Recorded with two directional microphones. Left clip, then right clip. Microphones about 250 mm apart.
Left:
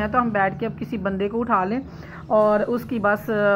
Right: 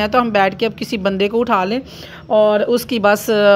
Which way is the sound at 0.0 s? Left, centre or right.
Right.